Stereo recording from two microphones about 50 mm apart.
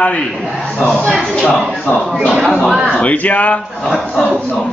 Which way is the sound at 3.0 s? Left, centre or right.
Left.